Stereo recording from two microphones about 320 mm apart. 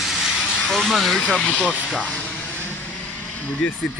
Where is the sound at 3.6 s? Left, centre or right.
Centre.